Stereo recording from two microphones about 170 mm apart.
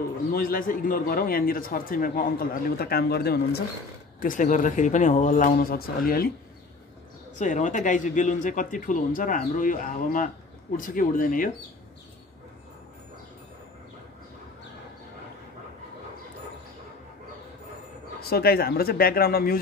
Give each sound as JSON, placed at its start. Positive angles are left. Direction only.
{"t": 0.3, "sound": "a man's voice", "side_deg": 55}
{"t": 4.2, "sound": "speech", "side_deg": 50}
{"t": 7.3, "sound": "speech", "side_deg": 45}
{"t": 18.3, "sound": "a man's voice", "side_deg": 65}